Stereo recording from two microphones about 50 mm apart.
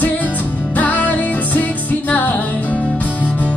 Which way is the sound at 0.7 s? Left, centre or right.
Left.